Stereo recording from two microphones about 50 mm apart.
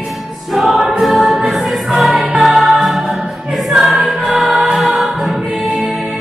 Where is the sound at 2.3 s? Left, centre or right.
Centre.